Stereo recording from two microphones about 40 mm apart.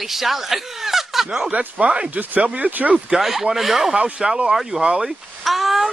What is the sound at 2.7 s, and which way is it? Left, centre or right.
Speech, right.